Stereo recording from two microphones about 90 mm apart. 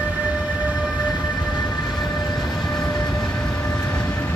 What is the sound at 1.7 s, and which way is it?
Train, centre (ahead or behind).